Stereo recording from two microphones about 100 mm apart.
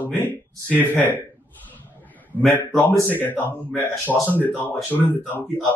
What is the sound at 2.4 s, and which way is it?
A man's voice, 20° left (ahead or behind).